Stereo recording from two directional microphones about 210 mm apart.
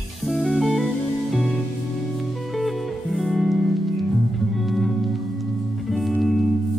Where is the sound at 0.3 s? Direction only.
Centre (ahead or behind).